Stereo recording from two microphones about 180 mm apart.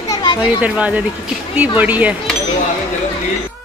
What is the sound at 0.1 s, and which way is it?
Children playing, 30° left (ahead or behind).